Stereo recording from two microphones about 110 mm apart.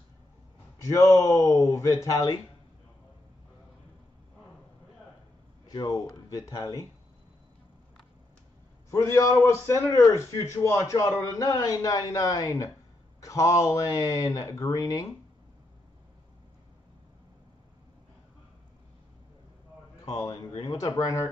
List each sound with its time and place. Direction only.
0.8 s speech: 30° left (ahead or behind)
5.7 s speech: 35° left (ahead or behind)
8.9 s speech: 25° left (ahead or behind)
20.1 s speech: 35° left (ahead or behind)